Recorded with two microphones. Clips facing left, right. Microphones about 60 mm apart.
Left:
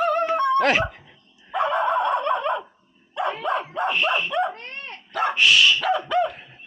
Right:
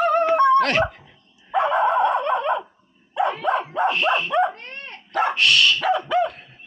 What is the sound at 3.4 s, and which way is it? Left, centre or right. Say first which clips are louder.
Dog: right 3 dB; centre.